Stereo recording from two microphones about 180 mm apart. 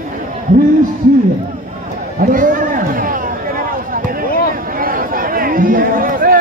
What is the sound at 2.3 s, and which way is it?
Run, 50° right (ahead or behind).